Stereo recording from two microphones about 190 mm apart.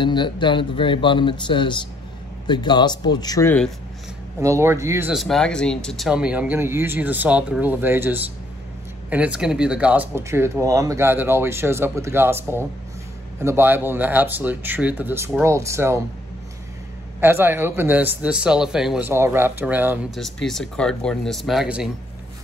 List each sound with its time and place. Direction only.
0.0 s speech: 25° left (ahead or behind)
4.4 s speech: 15° right (ahead or behind)
5.1 s speech: centre (ahead or behind)
17.2 s speech: 10° right (ahead or behind)
20.2 s speech: centre (ahead or behind)